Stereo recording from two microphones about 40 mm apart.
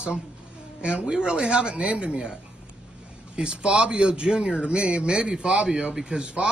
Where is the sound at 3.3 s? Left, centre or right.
Right.